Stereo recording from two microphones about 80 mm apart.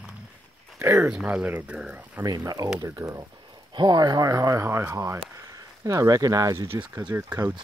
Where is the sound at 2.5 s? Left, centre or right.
Right.